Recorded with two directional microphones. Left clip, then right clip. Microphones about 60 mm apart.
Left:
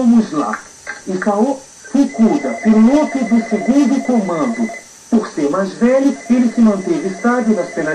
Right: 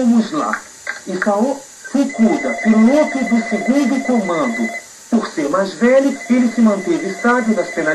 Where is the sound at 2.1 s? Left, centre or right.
Centre.